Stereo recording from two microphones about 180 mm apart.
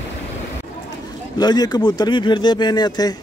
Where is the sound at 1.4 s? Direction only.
25° left (ahead or behind).